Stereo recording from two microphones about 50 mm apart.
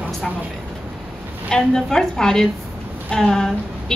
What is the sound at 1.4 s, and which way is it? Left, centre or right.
A woman's voice, centre.